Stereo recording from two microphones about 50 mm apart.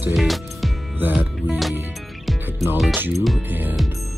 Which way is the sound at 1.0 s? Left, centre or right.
Right.